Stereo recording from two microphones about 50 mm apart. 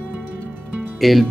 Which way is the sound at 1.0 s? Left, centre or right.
Centre.